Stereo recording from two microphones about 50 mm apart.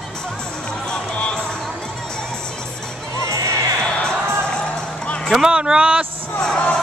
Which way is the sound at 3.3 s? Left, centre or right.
Right.